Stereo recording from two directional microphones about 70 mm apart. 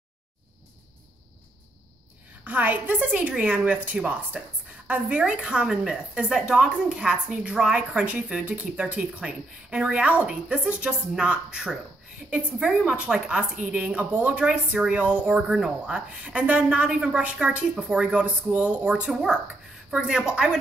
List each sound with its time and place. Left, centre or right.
2.4 s a woman's voice: right